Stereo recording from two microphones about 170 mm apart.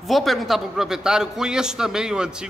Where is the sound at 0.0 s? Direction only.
Centre (ahead or behind).